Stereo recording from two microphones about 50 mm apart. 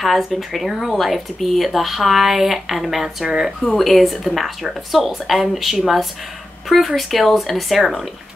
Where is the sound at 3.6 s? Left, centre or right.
Centre.